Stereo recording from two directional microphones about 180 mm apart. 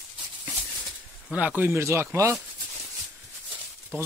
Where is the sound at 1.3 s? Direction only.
10° right (ahead or behind).